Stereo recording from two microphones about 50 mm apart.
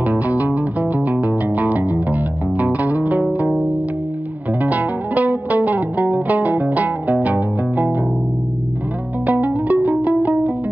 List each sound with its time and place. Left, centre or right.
0.0 s music: right
4.6 s music: right
9.2 s music: right